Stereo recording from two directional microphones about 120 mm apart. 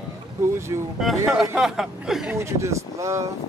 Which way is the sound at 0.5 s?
20° right (ahead or behind).